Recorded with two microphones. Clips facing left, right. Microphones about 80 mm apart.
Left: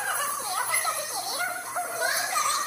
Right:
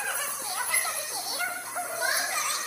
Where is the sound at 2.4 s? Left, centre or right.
Left.